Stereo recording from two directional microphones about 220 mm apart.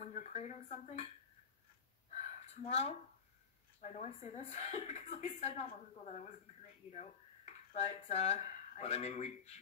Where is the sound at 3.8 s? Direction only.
30° left (ahead or behind).